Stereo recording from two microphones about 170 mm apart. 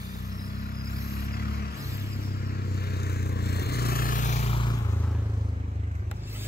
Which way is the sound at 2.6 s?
65° left (ahead or behind).